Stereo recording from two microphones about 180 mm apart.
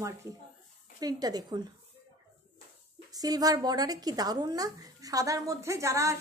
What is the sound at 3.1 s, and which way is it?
A woman's voice, 20° right (ahead or behind).